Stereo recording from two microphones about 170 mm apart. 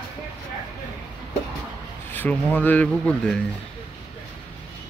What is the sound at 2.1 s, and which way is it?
Speech, 10° left (ahead or behind).